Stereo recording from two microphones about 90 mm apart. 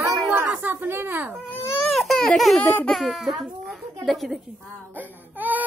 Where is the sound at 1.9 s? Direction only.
5° left (ahead or behind).